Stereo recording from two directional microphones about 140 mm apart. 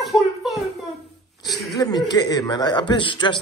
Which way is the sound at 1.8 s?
30° left (ahead or behind).